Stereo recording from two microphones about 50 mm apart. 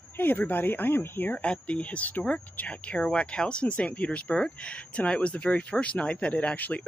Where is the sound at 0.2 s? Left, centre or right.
Left.